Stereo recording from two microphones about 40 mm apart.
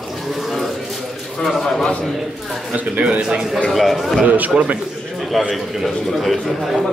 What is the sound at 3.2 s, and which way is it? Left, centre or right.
Speech, centre.